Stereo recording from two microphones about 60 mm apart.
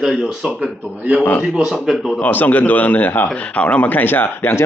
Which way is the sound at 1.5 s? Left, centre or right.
Centre.